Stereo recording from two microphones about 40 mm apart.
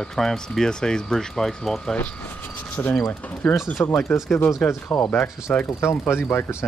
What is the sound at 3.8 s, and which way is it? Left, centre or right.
Speech, left.